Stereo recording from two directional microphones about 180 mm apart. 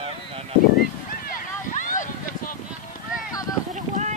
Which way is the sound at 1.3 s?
45° left (ahead or behind).